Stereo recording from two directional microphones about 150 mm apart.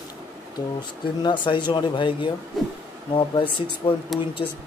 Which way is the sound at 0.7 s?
30° left (ahead or behind).